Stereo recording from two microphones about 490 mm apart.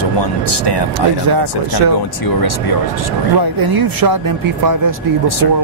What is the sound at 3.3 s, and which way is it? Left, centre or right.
Speech, right.